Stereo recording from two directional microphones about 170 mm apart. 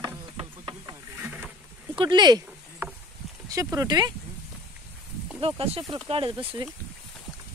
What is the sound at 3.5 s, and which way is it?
Speech, 20° right (ahead or behind).